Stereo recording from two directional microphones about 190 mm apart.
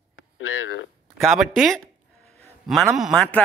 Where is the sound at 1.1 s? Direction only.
Centre (ahead or behind).